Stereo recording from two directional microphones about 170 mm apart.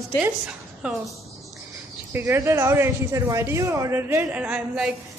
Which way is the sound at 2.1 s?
15° right (ahead or behind).